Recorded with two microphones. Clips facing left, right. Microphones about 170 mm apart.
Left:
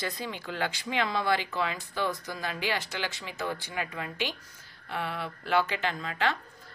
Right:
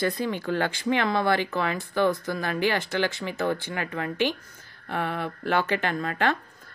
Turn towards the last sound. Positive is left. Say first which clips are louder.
# right 5 dB
turn(degrees=-50)  # may be behind; listen again after turning